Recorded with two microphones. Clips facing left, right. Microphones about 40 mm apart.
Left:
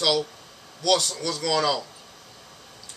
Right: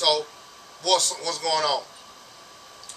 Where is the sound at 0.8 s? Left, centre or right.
Centre.